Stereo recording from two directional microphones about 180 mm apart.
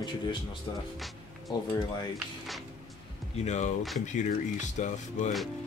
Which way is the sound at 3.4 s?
40° left (ahead or behind).